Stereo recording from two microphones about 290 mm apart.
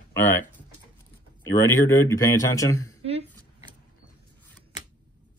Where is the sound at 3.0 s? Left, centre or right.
Right.